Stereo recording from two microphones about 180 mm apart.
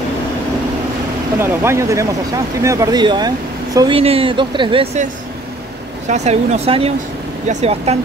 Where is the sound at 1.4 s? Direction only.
15° right (ahead or behind).